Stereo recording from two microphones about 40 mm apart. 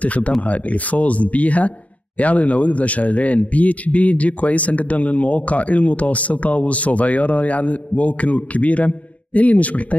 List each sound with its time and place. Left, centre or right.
0.0 s speech: left